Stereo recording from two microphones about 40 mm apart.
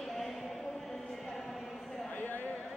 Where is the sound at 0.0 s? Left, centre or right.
Centre.